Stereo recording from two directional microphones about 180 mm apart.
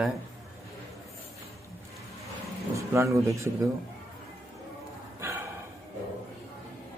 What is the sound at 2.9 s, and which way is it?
Speech, 15° right (ahead or behind).